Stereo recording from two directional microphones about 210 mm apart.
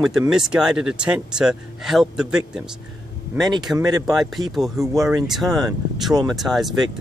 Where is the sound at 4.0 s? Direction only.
Centre (ahead or behind).